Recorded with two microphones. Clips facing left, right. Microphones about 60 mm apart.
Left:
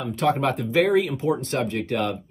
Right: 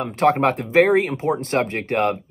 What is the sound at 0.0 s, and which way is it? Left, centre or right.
Speech, right.